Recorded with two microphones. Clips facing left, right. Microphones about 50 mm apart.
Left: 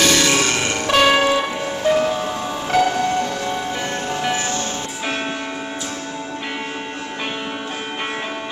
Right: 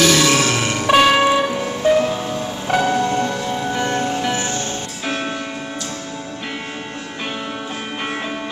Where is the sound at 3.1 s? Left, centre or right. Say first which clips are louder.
Right 1 dB; centre.